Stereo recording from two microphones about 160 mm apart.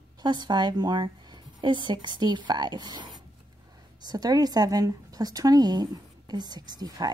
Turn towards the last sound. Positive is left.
turn(degrees=-25)  # may be behind; listen again after turning